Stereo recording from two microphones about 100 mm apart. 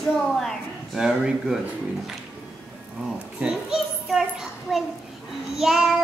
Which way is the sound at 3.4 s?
5° right (ahead or behind).